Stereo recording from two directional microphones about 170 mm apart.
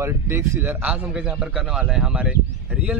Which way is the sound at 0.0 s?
15° right (ahead or behind).